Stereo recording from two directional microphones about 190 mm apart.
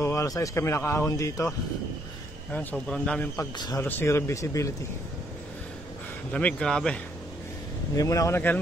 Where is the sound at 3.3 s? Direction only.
20° left (ahead or behind).